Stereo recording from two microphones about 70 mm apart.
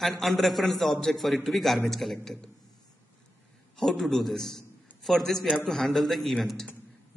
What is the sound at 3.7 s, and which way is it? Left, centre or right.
A man's voice, centre.